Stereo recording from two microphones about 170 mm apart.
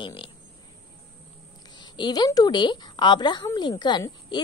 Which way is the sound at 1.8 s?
25° left (ahead or behind).